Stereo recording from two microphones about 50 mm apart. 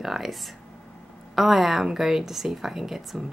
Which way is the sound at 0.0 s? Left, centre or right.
Centre.